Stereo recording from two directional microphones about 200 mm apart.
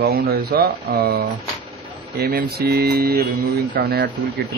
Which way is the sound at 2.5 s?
55° right (ahead or behind).